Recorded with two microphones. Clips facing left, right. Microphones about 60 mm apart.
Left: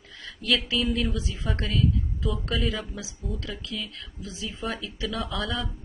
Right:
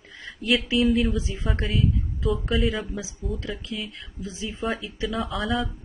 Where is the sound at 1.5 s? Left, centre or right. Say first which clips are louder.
Right 1 dB; centre.